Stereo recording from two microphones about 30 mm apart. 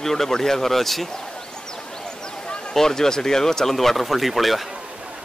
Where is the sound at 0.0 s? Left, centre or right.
Centre.